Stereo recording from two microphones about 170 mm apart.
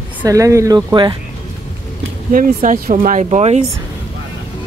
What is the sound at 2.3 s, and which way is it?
Speech, 55° right (ahead or behind).